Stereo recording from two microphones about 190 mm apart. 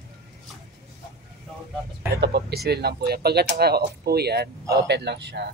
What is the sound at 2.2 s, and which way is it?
Speech, 55° right (ahead or behind).